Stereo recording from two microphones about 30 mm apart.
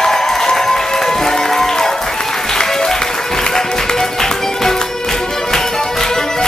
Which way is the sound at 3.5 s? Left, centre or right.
Centre.